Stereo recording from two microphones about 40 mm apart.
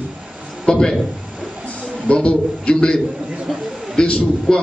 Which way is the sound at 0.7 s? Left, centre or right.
Centre.